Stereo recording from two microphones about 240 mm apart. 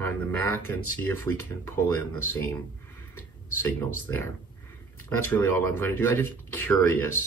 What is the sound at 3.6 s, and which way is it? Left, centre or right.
Speech, centre.